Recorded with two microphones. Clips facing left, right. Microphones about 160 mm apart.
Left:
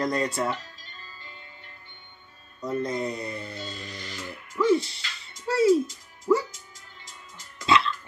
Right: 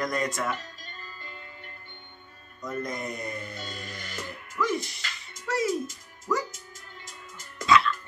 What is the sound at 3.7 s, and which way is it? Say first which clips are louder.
Music: left 1 dB; 50° right (ahead or behind).